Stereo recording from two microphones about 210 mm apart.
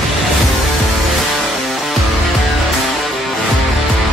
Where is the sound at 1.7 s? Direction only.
Centre (ahead or behind).